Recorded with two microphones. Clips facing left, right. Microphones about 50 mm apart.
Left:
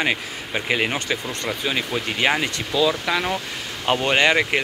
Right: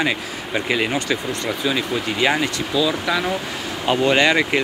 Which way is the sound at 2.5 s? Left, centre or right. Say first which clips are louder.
Even; left.